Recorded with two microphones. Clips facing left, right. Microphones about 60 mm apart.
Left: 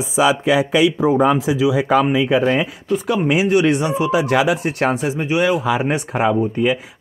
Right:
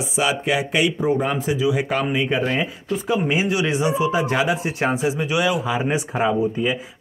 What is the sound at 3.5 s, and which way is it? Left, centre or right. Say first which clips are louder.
Speech: left 5 dB; left.